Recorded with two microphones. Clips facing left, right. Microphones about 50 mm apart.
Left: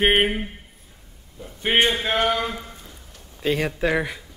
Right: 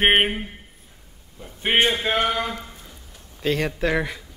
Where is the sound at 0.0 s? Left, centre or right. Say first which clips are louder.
Right 1 dB; right.